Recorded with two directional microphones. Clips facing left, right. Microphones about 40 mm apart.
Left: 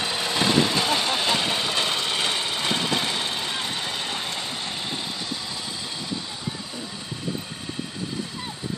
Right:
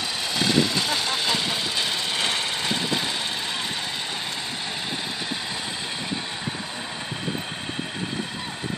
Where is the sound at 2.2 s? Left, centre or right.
Centre.